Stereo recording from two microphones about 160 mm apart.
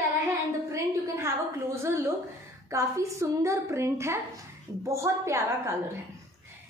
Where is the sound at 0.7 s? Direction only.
20° right (ahead or behind).